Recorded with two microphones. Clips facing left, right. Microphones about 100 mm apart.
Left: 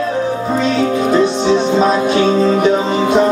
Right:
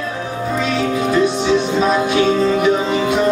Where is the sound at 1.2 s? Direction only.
30° left (ahead or behind).